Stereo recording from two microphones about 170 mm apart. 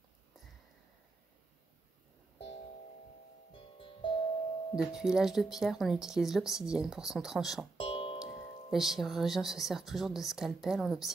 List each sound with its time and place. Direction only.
3.5 s music: 30° left (ahead or behind)
4.7 s speech: 5° right (ahead or behind)
7.7 s music: 30° left (ahead or behind)
8.2 s speech: centre (ahead or behind)